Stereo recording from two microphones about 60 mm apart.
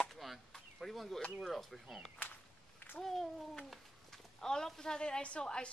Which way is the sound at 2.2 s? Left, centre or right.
Left.